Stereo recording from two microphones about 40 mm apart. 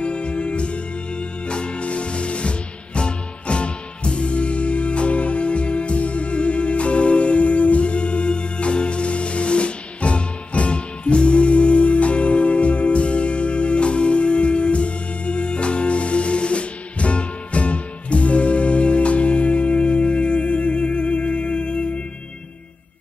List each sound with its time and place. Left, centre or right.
0.0 s music: left